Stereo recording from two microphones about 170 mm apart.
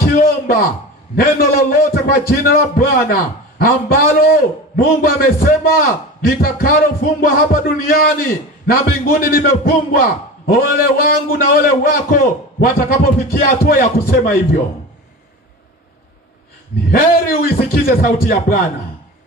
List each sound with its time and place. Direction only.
0.0 s a sound: 60° left (ahead or behind)
1.4 s a man's voice: 60° left (ahead or behind)
16.9 s a man's voice: 60° left (ahead or behind)